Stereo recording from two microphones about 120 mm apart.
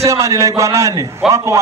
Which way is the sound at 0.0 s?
25° right (ahead or behind).